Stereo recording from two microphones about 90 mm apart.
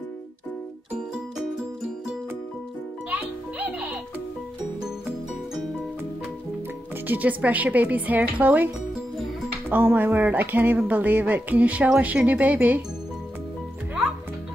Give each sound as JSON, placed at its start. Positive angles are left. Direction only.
{"t": 3.1, "sound": "music", "side_deg": -20}
{"t": 4.8, "sound": "music", "side_deg": -5}
{"t": 7.1, "sound": "speech", "side_deg": -15}
{"t": 9.7, "sound": "speech", "side_deg": -20}